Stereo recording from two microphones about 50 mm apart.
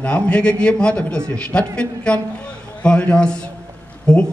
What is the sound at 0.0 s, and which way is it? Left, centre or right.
Speech, left.